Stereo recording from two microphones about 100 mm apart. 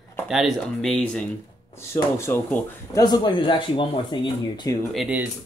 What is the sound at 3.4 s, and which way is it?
Speech, 55° left (ahead or behind).